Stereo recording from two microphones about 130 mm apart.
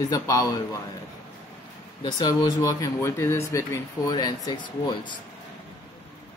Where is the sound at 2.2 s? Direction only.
30° left (ahead or behind).